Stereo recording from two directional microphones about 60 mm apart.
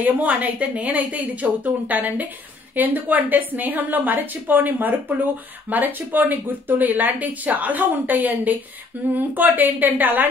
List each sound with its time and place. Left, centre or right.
0.0 s a woman's voice: right